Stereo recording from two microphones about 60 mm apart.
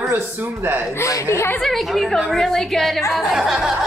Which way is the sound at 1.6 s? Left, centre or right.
Centre.